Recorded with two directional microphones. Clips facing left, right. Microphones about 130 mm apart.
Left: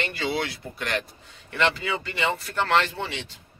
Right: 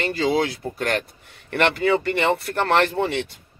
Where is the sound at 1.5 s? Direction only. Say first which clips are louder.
Right 6 dB; 55° right (ahead or behind).